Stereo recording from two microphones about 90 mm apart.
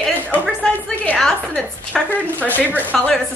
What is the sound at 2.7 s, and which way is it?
Speech, 20° left (ahead or behind).